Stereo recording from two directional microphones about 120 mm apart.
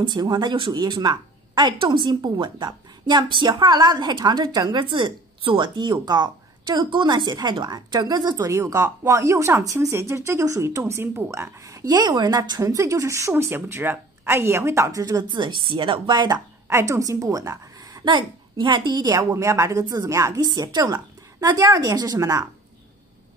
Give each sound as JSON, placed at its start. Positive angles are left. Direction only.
{"t": 0.0, "sound": "a woman's voice", "side_deg": -35}
{"t": 15.2, "sound": "speech", "side_deg": -40}
{"t": 16.6, "sound": "a woman's voice", "side_deg": -25}
{"t": 18.0, "sound": "speech", "side_deg": -40}
{"t": 19.3, "sound": "a woman's voice", "side_deg": -25}